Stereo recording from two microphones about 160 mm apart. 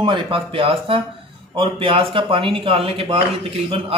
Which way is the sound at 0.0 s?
30° right (ahead or behind).